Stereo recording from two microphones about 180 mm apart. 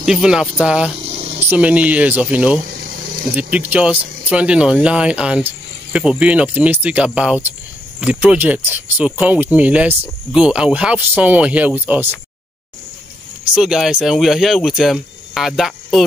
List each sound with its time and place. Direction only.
0.0 s speech: 5° right (ahead or behind)
1.0 s a sound: 35° right (ahead or behind)
1.5 s speech: 10° right (ahead or behind)
2.7 s a sound: 55° right (ahead or behind)
3.3 s speech: 5° right (ahead or behind)
13.6 s speech: 5° right (ahead or behind)